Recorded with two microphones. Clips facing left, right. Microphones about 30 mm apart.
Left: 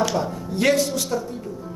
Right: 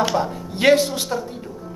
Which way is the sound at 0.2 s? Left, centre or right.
Right.